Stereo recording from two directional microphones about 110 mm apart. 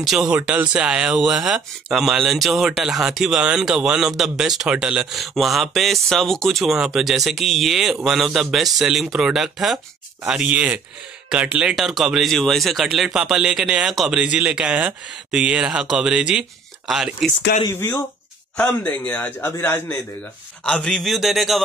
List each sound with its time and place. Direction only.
0.0 s a man's voice: 5° right (ahead or behind)
11.7 s a man's voice: centre (ahead or behind)
17.7 s a man's voice: 20° left (ahead or behind); by 21.5 s centre (ahead or behind)